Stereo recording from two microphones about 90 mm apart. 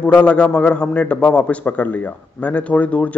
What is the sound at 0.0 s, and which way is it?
A man's voice, 15° left (ahead or behind).